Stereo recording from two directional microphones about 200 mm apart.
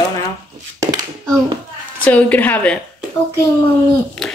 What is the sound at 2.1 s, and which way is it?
Speech, 5° left (ahead or behind).